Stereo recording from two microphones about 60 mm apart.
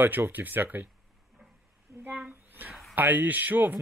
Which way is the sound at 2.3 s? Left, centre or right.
Right.